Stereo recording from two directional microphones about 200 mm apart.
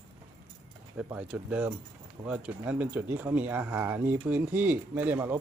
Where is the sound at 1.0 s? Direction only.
10° right (ahead or behind).